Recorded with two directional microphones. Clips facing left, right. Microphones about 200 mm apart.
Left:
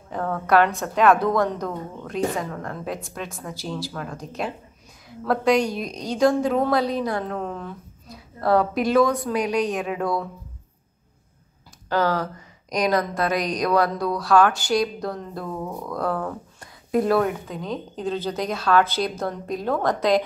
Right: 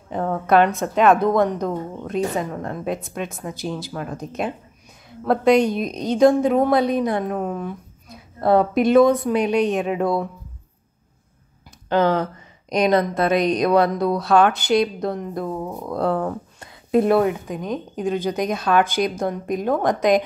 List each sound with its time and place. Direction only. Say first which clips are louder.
0.1 s speech: right 2 dB; 20° right (ahead or behind)
11.9 s speech: right 4 dB; 20° right (ahead or behind)
15.9 s speech: right 5 dB; 25° right (ahead or behind)